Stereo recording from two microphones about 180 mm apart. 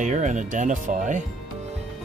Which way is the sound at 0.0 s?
45° right (ahead or behind).